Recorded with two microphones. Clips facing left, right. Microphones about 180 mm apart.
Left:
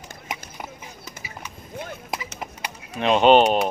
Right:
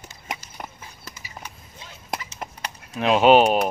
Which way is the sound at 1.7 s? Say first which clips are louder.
Left 11 dB; 55° left (ahead or behind).